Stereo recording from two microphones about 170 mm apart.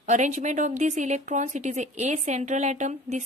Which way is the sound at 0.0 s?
45° right (ahead or behind).